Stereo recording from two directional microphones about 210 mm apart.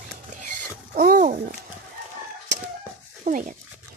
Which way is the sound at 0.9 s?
40° right (ahead or behind).